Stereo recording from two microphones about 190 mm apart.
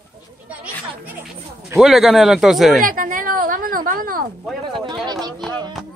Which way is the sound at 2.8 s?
45° right (ahead or behind).